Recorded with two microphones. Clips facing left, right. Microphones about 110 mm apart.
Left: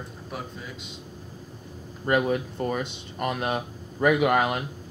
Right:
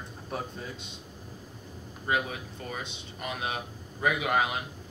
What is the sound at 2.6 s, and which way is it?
Speech, 50° left (ahead or behind).